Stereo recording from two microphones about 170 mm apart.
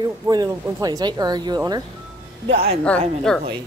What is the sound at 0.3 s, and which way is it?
Speech, 20° right (ahead or behind).